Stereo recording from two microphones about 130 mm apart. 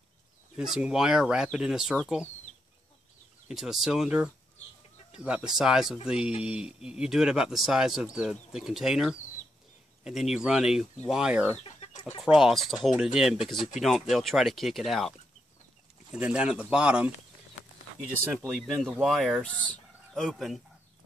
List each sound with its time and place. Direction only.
0.6 s speech: 5° right (ahead or behind)
3.4 s speech: 5° right (ahead or behind)
11.6 s chicken: 50° left (ahead or behind)
12.2 s speech: 5° right (ahead or behind)
18.4 s speech: centre (ahead or behind)